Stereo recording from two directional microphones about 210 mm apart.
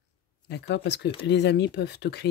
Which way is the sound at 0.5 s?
55° left (ahead or behind).